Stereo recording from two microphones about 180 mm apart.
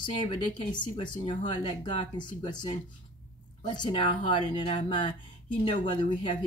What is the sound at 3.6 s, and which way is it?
Speech, 25° left (ahead or behind).